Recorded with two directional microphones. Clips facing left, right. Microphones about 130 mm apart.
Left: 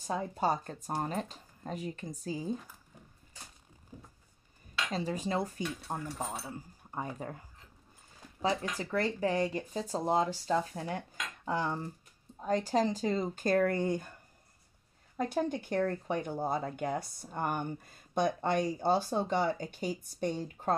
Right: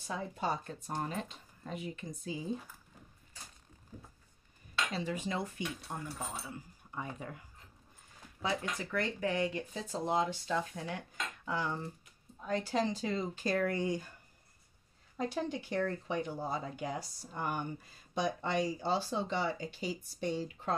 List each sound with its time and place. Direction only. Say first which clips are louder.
0.0 s speech: left 5 dB; 40° left (ahead or behind)
4.9 s speech: left 6 dB; 40° left (ahead or behind)
15.1 s speech: left 4 dB; 50° left (ahead or behind)